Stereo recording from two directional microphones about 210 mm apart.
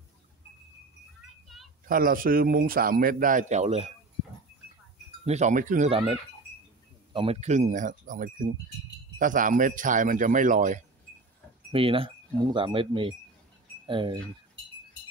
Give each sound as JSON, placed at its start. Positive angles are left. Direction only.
{"t": 1.9, "sound": "speech", "side_deg": -40}
{"t": 5.2, "sound": "speech", "side_deg": -35}
{"t": 5.9, "sound": "speech", "side_deg": -25}
{"t": 11.7, "sound": "speech", "side_deg": -25}